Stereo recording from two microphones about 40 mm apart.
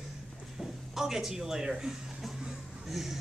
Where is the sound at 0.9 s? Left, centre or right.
Centre.